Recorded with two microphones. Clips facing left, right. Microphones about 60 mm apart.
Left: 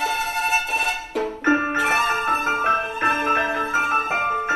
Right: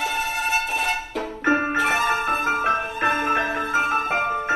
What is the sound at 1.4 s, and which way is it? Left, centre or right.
Music, centre.